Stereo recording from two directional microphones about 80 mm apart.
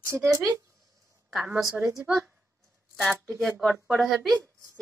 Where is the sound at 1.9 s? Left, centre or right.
Centre.